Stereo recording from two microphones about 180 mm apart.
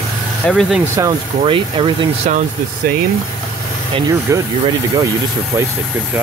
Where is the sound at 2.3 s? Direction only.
40° right (ahead or behind).